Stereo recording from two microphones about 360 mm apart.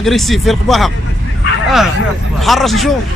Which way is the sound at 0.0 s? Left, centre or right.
Centre.